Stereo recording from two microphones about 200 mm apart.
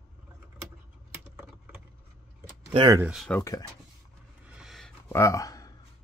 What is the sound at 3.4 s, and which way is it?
Speech, 15° left (ahead or behind).